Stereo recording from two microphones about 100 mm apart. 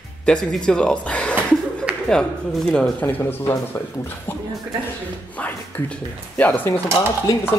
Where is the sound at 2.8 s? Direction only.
15° left (ahead or behind).